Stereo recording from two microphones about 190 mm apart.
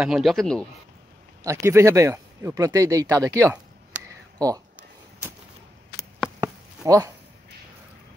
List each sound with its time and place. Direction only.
0.0 s a man's voice: centre (ahead or behind)
1.4 s speech: 15° right (ahead or behind)
6.8 s speech: 15° right (ahead or behind)